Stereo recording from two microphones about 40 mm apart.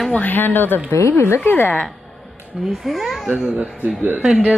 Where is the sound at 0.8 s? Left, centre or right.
Left.